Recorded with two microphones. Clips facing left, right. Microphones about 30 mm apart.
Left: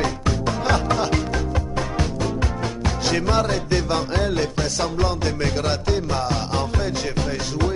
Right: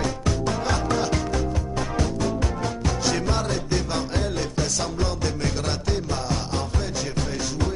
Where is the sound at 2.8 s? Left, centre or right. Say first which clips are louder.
Left 3 dB; left.